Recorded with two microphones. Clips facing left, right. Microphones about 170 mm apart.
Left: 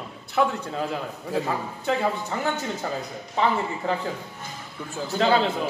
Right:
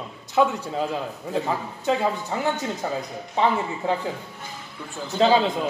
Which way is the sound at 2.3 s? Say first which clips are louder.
Right 2 dB; 15° right (ahead or behind).